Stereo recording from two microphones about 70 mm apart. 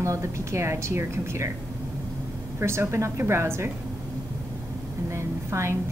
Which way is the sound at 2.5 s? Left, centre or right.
Right.